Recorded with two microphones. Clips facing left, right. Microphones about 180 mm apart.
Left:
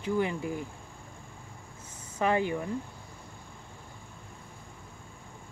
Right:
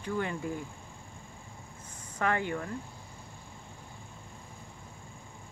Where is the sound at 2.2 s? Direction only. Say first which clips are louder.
Left 3 dB; 15° left (ahead or behind).